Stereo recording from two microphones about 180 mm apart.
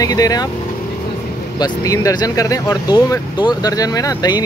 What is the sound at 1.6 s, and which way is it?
Speech, 20° left (ahead or behind).